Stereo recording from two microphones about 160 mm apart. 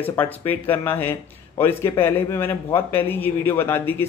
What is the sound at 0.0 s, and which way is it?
A man's voice, 10° left (ahead or behind).